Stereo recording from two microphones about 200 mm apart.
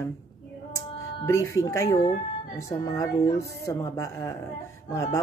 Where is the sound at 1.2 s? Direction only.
15° left (ahead or behind).